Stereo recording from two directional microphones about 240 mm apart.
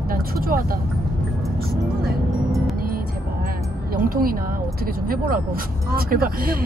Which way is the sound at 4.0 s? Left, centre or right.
Right.